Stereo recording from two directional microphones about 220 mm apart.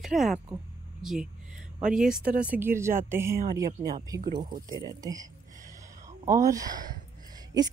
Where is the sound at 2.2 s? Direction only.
40° right (ahead or behind).